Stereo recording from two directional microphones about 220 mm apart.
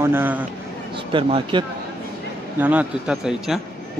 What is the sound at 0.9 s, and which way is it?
Speech, 20° right (ahead or behind).